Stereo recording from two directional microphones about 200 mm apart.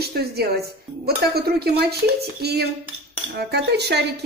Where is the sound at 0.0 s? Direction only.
55° right (ahead or behind).